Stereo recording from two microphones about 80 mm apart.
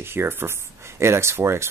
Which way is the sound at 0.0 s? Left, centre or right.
Right.